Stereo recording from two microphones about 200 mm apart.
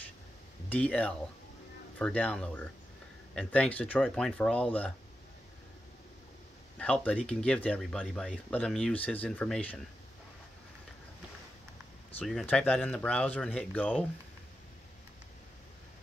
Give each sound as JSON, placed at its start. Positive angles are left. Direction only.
{"t": 0.7, "sound": "speech", "side_deg": 5}
{"t": 6.8, "sound": "speech", "side_deg": 5}
{"t": 12.2, "sound": "speech", "side_deg": 5}